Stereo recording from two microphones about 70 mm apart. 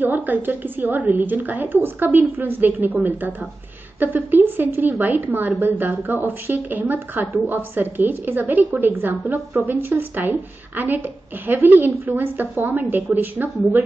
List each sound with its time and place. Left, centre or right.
0.0 s a woman's voice: right
9.3 s a woman's voice: right
9.7 s a woman's voice: right